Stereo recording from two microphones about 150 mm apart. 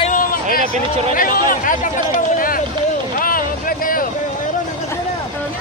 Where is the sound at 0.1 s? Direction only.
65° left (ahead or behind).